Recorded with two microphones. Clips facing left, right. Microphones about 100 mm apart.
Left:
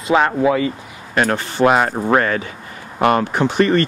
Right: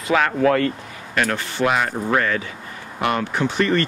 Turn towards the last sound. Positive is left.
turn(degrees=40)  # may be behind; listen again after turning